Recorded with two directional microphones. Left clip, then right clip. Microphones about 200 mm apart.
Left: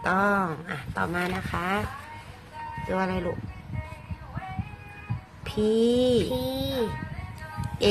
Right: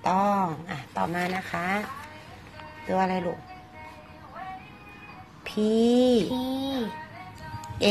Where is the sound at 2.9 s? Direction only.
Centre (ahead or behind).